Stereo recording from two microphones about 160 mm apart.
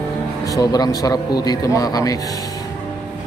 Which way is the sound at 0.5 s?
25° left (ahead or behind).